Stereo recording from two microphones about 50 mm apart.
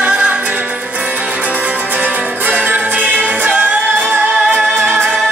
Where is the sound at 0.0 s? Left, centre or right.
Right.